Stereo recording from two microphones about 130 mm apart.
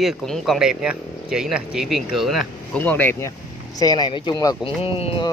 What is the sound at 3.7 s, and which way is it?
Speech, 30° left (ahead or behind).